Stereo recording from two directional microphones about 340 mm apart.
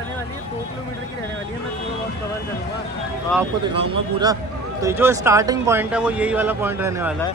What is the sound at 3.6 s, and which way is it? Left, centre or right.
Speech, centre.